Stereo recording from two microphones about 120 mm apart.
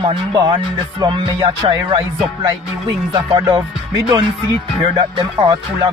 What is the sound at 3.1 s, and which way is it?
Music, 40° right (ahead or behind).